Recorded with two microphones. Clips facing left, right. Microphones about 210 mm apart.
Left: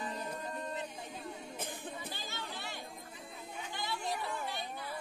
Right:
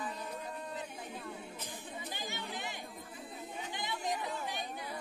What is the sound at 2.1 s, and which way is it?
Chatter, 15° right (ahead or behind).